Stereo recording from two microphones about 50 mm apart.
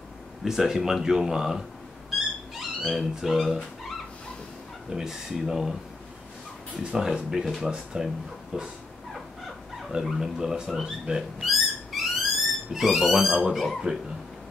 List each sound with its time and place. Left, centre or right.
0.4 s speech: centre
2.0 s a sound: centre
4.8 s speech: centre
6.8 s speech: centre
7.4 s speech: centre
8.5 s dog: centre
10.0 s speech: centre